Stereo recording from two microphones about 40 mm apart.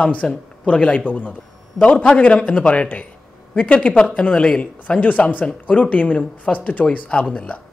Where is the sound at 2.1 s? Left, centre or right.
Left.